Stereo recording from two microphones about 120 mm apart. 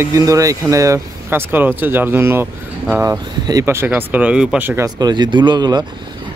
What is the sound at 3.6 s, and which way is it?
Speech, 20° right (ahead or behind).